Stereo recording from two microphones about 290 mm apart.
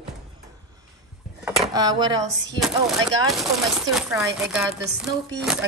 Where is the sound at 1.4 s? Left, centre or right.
Centre.